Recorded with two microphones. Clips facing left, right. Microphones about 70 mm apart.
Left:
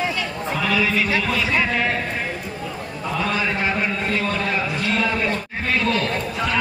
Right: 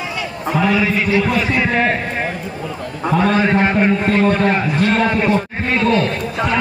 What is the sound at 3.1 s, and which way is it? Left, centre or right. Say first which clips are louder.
A man's voice: right 8 dB; right.